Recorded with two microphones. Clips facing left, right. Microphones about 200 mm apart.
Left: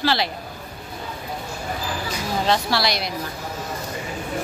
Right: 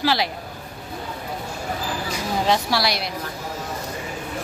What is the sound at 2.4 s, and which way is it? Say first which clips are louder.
Speech: even; 10° right (ahead or behind).